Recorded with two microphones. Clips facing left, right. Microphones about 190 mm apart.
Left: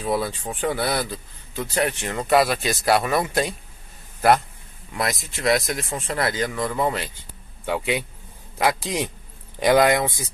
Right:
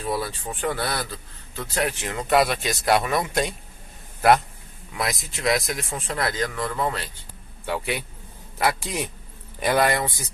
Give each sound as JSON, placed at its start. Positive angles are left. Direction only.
{"t": 0.0, "sound": "a man's voice", "side_deg": 15}
{"t": 1.8, "sound": "speech", "side_deg": 0}
{"t": 4.9, "sound": "speech", "side_deg": 0}
{"t": 6.4, "sound": "a man's voice", "side_deg": 15}